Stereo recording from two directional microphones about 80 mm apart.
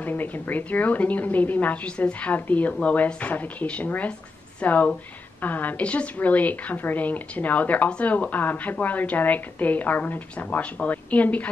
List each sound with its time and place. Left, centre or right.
0.0 s a woman's voice: left